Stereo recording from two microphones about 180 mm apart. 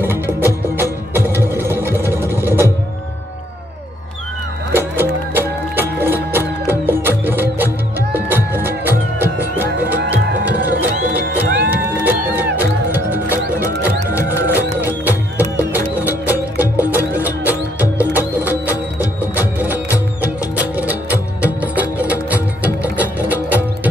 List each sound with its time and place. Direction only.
0.0 s music: 10° right (ahead or behind)
1.4 s a sound: 15° right (ahead or behind)
2.3 s music: 10° right (ahead or behind)
4.7 s music: 10° right (ahead or behind)
10.8 s music: 10° right (ahead or behind)
11.4 s music: 65° right (ahead or behind)
11.7 s music: 10° right (ahead or behind)
14.5 s music: 10° right (ahead or behind)